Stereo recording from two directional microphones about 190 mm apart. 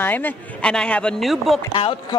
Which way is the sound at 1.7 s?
30° left (ahead or behind).